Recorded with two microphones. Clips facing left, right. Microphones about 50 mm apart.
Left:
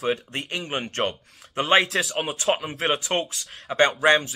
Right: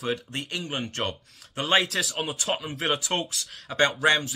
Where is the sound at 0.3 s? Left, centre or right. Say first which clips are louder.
Left 3 dB; left.